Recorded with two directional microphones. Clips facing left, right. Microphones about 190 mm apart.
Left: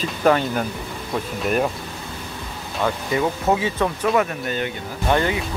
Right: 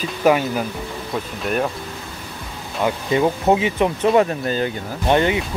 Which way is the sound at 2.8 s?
25° right (ahead or behind).